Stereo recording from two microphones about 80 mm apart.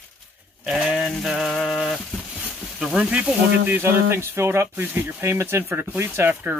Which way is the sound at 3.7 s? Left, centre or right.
Right.